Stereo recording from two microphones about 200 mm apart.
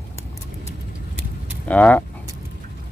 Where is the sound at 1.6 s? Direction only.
5° left (ahead or behind).